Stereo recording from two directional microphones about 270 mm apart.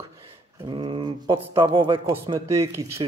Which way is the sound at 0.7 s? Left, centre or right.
Centre.